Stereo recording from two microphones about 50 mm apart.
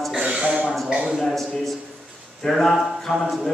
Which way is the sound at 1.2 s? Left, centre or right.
Centre.